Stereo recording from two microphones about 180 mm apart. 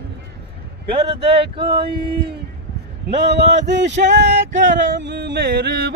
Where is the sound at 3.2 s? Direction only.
75° right (ahead or behind).